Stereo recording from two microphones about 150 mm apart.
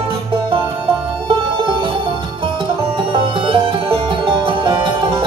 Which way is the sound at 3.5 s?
35° right (ahead or behind).